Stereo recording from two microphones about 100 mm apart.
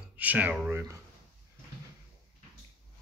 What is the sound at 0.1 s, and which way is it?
Speech, 15° right (ahead or behind).